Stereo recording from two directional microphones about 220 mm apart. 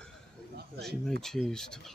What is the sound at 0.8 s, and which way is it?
Speech, centre (ahead or behind).